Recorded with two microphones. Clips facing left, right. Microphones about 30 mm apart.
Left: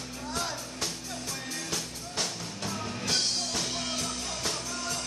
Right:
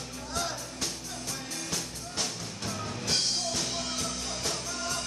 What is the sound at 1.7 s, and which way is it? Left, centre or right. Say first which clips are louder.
Music: left 1 dB; centre.